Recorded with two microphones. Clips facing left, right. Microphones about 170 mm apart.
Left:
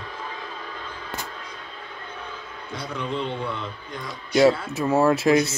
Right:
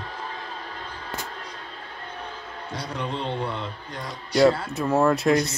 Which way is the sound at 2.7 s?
50° left (ahead or behind).